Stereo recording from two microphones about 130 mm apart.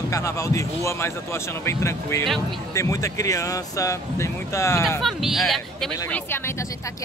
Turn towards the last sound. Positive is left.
turn(degrees=20)  # may be behind; listen again after turning